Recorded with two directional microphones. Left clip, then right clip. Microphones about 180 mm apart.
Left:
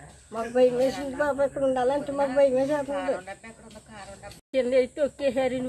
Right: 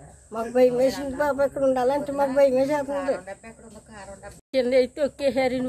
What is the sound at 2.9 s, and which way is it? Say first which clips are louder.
Speech: right 2 dB; 65° right (ahead or behind).